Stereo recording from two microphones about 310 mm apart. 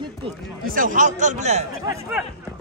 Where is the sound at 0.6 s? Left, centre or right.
Right.